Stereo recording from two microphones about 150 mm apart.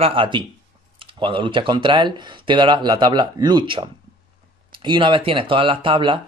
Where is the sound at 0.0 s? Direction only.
35° right (ahead or behind).